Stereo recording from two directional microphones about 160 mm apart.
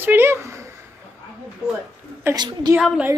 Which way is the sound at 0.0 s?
15° right (ahead or behind).